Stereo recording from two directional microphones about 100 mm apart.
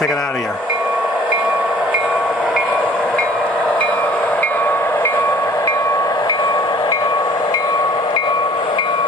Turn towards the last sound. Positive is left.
turn(degrees=40)  # may be behind; listen again after turning